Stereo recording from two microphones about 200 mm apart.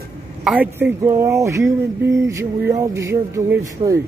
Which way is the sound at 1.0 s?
15° right (ahead or behind).